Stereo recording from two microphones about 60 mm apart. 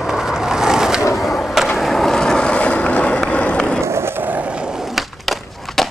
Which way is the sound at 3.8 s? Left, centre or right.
Right.